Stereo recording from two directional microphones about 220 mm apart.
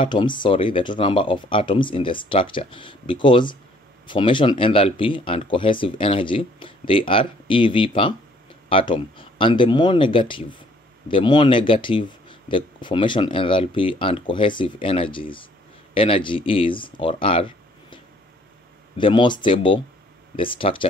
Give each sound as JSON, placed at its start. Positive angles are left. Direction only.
{"t": 0.0, "sound": "speech", "side_deg": 20}